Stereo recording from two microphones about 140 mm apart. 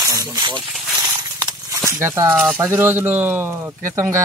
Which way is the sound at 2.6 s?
15° right (ahead or behind).